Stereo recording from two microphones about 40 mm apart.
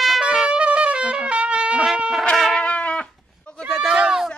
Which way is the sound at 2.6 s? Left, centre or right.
Left.